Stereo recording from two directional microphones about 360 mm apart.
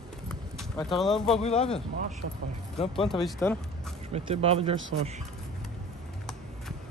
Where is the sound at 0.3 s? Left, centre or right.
Centre.